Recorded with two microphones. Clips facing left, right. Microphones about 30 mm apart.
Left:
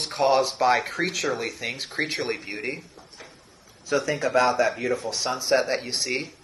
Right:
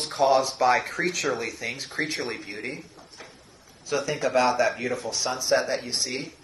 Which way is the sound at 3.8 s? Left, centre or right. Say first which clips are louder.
Left 2 dB; left.